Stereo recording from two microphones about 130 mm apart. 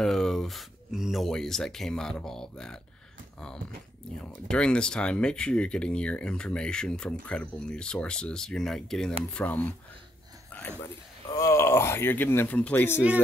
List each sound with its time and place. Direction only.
0.0 s speech: 5° left (ahead or behind)
4.5 s speech: 5° left (ahead or behind)
10.5 s a sound: 10° left (ahead or behind)
11.3 s speech: 20° left (ahead or behind)